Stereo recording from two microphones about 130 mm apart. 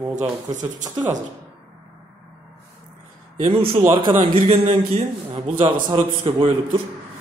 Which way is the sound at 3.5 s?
45° right (ahead or behind).